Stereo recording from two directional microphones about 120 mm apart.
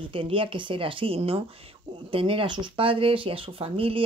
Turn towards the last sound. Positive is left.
turn(degrees=-50)  # may be behind; listen again after turning